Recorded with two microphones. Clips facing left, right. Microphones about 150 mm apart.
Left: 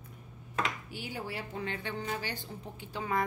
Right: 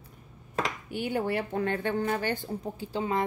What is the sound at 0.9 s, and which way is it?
A woman's voice, 60° right (ahead or behind).